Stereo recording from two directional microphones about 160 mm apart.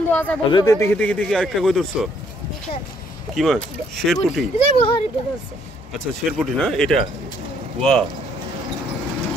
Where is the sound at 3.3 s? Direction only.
Centre (ahead or behind).